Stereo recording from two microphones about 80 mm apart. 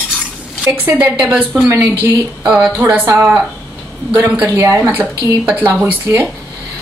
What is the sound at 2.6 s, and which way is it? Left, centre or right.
Speech, right.